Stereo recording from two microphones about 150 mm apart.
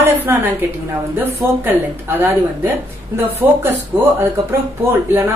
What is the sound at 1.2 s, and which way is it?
A woman's voice, 15° right (ahead or behind).